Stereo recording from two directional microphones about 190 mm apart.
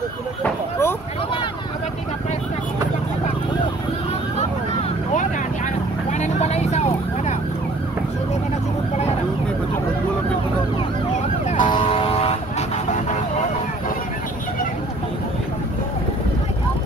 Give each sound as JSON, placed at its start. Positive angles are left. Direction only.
{"t": 0.4, "sound": "a sound", "side_deg": 10}
{"t": 6.1, "sound": "vehicle", "side_deg": 35}
{"t": 11.6, "sound": "vehicle", "side_deg": 25}